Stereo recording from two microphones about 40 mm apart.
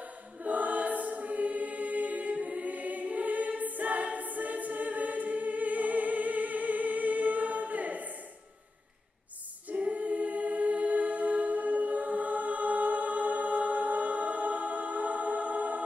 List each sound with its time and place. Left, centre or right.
0.4 s choir: right
9.8 s choir: right